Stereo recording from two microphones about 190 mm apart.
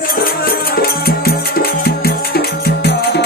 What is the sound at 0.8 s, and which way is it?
Music, 55° left (ahead or behind).